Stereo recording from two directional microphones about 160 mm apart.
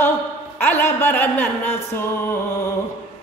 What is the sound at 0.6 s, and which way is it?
Speech, 10° left (ahead or behind).